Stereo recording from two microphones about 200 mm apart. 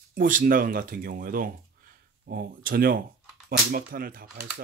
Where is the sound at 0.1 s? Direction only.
45° right (ahead or behind).